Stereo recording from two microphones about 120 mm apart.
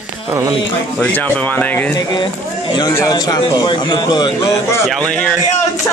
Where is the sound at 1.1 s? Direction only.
15° left (ahead or behind).